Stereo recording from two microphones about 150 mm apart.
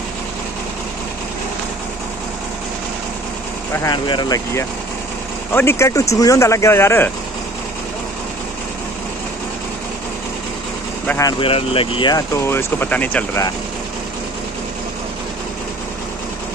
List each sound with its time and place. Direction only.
3.7 s speech: 20° left (ahead or behind)
5.5 s speech: 15° left (ahead or behind)
11.1 s speech: 20° left (ahead or behind)
11.3 s speech: 40° left (ahead or behind)
12.4 s speech: 15° left (ahead or behind)